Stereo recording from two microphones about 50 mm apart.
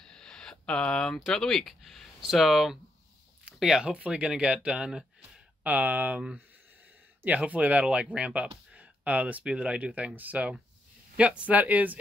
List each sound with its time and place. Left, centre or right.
0.0 s speech: centre
2.2 s speech: centre
3.9 s speech: right
5.6 s speech: right
7.2 s speech: right